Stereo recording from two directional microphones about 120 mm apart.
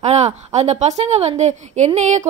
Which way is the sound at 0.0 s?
70° right (ahead or behind).